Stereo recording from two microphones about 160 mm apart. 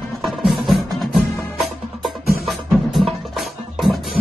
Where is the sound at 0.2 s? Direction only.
Centre (ahead or behind).